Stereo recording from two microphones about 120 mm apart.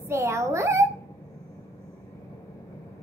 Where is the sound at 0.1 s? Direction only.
25° right (ahead or behind).